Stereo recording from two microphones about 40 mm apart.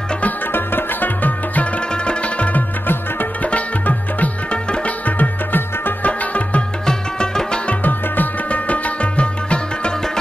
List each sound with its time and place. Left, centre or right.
0.5 s music: left
2.0 s music: left
5.0 s music: left
6.9 s music: centre
7.8 s music: left